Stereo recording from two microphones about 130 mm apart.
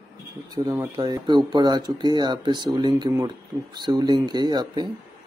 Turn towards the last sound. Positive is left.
turn(degrees=-30)  # may be behind; listen again after turning